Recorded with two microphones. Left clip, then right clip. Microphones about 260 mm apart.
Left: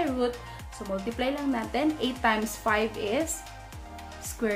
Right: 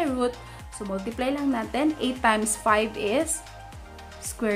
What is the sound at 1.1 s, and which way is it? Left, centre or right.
A woman's voice, centre.